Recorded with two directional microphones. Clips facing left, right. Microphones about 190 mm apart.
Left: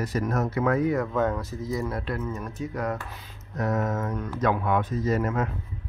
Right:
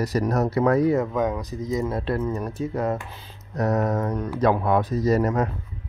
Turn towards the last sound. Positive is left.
turn(degrees=-40)  # may be behind; listen again after turning